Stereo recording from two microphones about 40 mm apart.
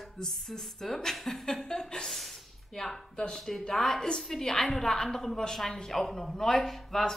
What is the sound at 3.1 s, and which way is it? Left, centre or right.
Speech, left.